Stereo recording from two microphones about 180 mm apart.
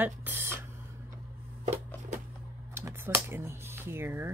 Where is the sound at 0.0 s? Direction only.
10° right (ahead or behind).